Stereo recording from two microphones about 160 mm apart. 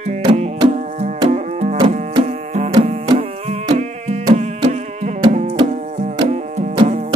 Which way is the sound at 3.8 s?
45° right (ahead or behind).